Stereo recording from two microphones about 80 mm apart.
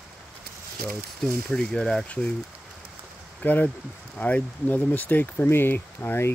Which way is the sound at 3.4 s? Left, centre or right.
Left.